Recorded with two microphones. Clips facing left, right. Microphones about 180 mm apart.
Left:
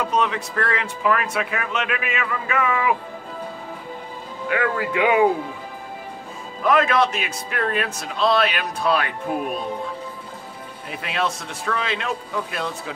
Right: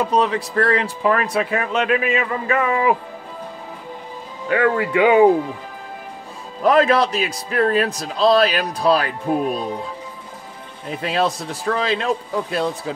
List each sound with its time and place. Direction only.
0.0 s speech: 35° right (ahead or behind)
4.5 s speech: 30° right (ahead or behind)
6.6 s speech: 35° right (ahead or behind)
11.0 s speech: 35° right (ahead or behind)